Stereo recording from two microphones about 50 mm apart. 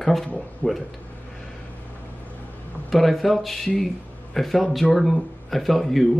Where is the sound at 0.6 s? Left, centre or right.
Left.